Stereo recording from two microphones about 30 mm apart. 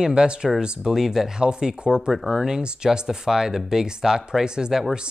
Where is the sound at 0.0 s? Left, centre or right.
Right.